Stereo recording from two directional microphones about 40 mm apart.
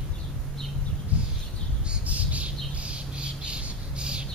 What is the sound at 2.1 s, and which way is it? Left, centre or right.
Bird, right.